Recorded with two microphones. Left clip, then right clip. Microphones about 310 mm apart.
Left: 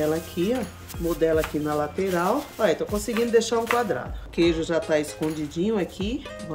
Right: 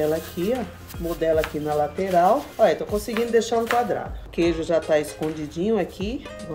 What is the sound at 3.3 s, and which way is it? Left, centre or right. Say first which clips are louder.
Speech: even; left.